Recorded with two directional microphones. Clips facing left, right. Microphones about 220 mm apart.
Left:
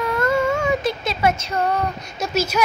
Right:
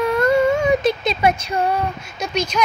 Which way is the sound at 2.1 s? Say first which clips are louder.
Left 1 dB; 5° left (ahead or behind).